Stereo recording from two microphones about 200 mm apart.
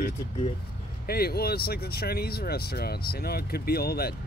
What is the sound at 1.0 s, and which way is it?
Speech, 50° left (ahead or behind).